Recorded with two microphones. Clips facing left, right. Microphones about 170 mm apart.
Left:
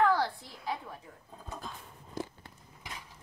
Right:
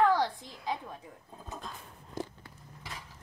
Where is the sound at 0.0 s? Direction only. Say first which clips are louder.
Right 1 dB; 20° right (ahead or behind).